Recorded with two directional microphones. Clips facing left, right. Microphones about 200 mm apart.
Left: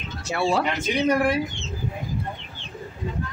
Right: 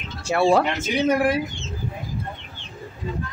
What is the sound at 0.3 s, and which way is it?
Speech, 50° right (ahead or behind).